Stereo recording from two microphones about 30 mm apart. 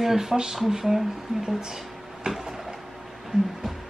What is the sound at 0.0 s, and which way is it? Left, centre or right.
Speech, centre.